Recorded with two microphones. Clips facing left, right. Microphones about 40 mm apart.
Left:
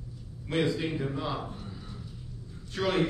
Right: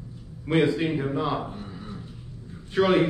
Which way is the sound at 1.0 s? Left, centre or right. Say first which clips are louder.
Right 6 dB; centre.